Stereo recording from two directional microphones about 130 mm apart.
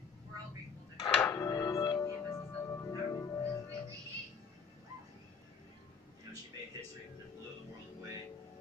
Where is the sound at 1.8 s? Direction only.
35° left (ahead or behind).